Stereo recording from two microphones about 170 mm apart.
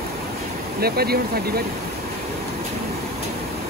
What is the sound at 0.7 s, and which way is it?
Speech, 65° right (ahead or behind).